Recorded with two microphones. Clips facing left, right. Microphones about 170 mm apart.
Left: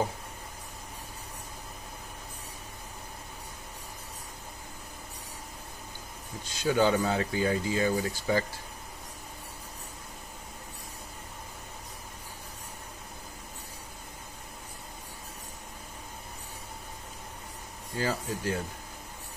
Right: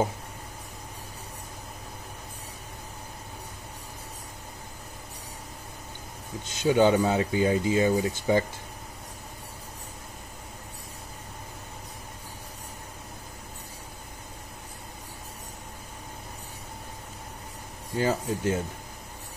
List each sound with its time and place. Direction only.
6.5 s speech: 20° right (ahead or behind)
17.9 s speech: 20° right (ahead or behind)